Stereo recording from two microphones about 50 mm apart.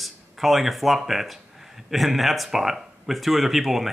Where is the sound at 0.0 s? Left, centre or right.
Centre.